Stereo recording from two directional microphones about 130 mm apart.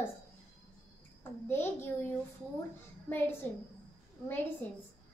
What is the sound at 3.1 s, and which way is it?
Speech, 15° left (ahead or behind).